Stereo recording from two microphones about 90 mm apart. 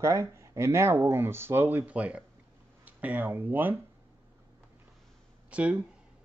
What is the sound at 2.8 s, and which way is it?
Speech, 20° right (ahead or behind).